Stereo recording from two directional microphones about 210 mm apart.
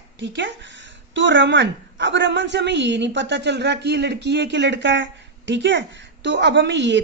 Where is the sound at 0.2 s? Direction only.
60° right (ahead or behind).